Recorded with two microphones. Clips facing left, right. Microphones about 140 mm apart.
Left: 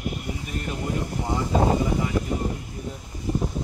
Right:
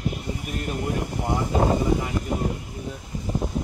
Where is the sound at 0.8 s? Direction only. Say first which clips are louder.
Even; 15° right (ahead or behind).